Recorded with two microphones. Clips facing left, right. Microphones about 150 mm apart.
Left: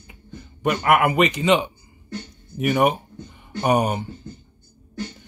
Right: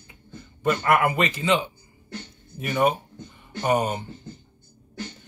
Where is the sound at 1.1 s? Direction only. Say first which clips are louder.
Left 5 dB; 15° left (ahead or behind).